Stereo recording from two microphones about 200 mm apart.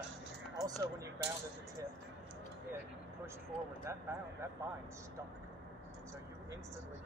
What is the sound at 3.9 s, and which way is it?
Speech, 15° right (ahead or behind).